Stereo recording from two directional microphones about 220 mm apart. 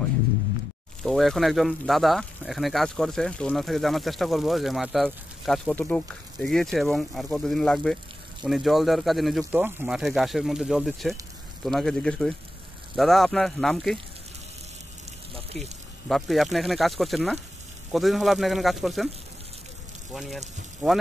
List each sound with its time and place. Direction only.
1.0 s speech: centre (ahead or behind)
15.3 s a sound: 30° right (ahead or behind)
16.1 s speech: centre (ahead or behind)
20.1 s speech: centre (ahead or behind)